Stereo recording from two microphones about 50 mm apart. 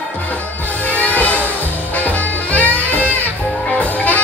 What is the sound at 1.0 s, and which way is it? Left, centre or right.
Music, left.